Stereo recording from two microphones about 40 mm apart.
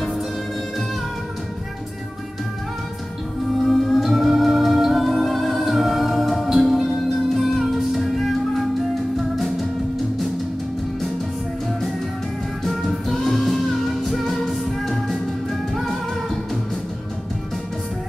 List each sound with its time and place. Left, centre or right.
3.6 s music: centre
12.6 s music: centre